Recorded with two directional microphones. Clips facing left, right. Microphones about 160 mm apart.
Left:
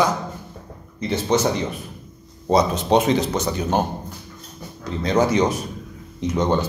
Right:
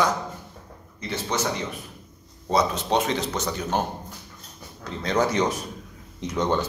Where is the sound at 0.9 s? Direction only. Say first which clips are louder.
Left 8 dB; 25° left (ahead or behind).